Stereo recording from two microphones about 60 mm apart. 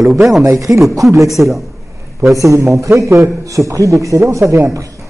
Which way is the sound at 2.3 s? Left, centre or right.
Right.